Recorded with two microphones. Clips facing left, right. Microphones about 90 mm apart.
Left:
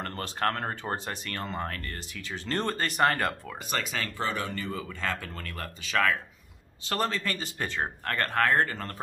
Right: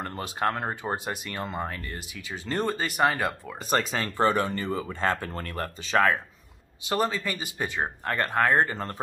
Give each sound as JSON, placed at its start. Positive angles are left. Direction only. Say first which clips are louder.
{"t": 0.0, "sound": "speech", "louder": "right 2 dB", "side_deg": -10}
{"t": 3.6, "sound": "speech", "louder": "right 6 dB", "side_deg": -35}
{"t": 6.8, "sound": "speech", "louder": "right 3 dB", "side_deg": -10}